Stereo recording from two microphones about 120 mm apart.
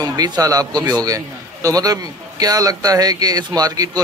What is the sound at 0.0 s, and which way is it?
A man's voice, 30° right (ahead or behind).